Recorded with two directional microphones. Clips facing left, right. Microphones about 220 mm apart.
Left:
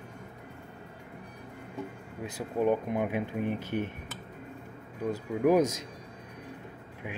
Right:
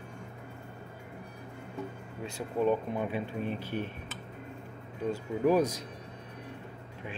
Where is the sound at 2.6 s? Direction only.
15° left (ahead or behind).